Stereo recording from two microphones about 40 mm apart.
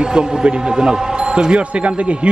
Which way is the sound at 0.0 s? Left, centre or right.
Centre.